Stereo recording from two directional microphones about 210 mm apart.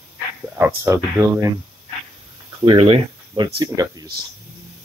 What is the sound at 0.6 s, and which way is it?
Speech, 10° right (ahead or behind).